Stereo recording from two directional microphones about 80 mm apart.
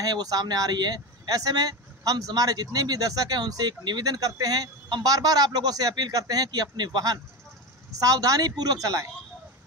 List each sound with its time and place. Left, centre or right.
0.0 s speech: right